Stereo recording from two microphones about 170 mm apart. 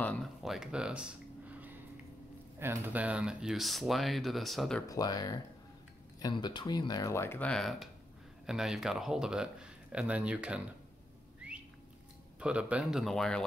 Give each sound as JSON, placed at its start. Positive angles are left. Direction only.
{"t": 0.0, "sound": "speech", "side_deg": 5}
{"t": 4.8, "sound": "speech", "side_deg": 20}
{"t": 11.4, "sound": "a sound", "side_deg": -5}
{"t": 12.4, "sound": "speech", "side_deg": -5}